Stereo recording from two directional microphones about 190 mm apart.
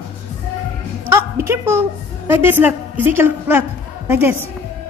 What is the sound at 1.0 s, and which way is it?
A woman's voice, 15° right (ahead or behind).